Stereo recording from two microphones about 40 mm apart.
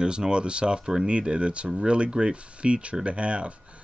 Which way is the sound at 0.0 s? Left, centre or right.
Right.